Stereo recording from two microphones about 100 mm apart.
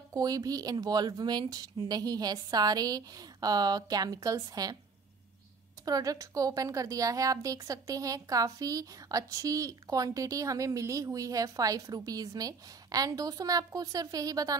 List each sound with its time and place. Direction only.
0.1 s speech: 40° right (ahead or behind)
5.9 s speech: 35° right (ahead or behind)